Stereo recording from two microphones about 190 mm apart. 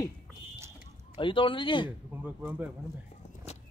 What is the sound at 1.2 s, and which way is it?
Speech, 25° left (ahead or behind).